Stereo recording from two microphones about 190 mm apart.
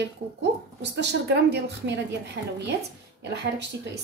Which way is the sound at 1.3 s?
60° right (ahead or behind).